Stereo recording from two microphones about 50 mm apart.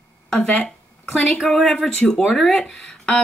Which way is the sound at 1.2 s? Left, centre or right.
Centre.